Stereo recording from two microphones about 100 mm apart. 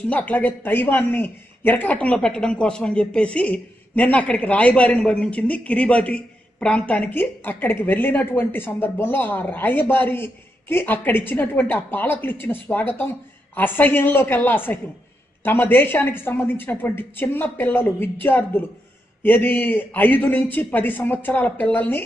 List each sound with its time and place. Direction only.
0.1 s a man's voice: 15° left (ahead or behind)